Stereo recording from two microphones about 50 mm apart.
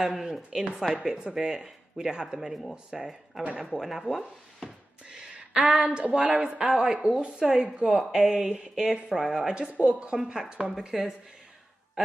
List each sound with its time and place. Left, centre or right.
0.1 s speech: centre
5.1 s a sound: centre
5.9 s a woman's voice: right
9.2 s speech: centre
9.5 s a woman's voice: right
10.4 s speech: centre